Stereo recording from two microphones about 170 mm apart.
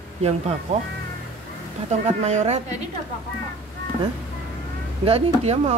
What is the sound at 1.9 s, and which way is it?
Speech, 40° right (ahead or behind).